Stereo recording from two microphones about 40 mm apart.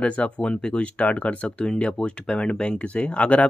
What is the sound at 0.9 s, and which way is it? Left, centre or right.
Speech, left.